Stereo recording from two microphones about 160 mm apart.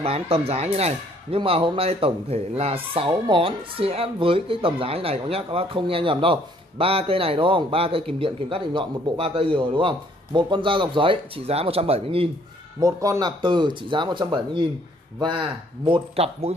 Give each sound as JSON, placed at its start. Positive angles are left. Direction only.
{"t": 0.0, "sound": "speech", "side_deg": -40}
{"t": 12.8, "sound": "speech", "side_deg": -20}